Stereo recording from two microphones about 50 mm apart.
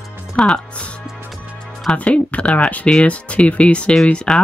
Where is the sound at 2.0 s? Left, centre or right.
Left.